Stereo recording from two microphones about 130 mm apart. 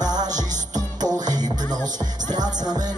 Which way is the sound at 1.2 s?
30° right (ahead or behind).